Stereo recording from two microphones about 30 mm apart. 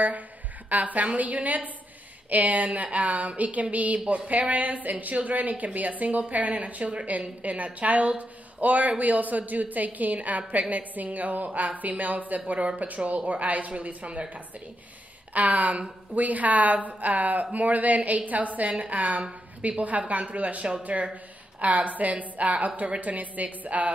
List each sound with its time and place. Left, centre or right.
0.7 s a woman's voice: right
12.4 s a woman's voice: right
13.7 s speech: right
15.3 s a woman's voice: right